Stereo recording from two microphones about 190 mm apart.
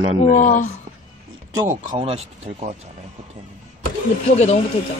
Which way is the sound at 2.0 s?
35° right (ahead or behind).